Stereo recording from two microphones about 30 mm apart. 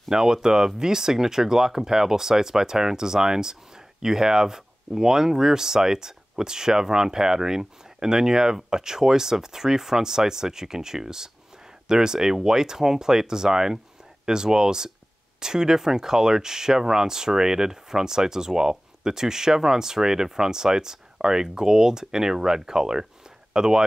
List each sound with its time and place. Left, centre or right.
0.1 s speech: centre